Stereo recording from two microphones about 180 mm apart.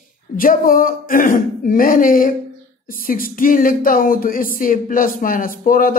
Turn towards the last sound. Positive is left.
turn(degrees=50)  # may be behind; listen again after turning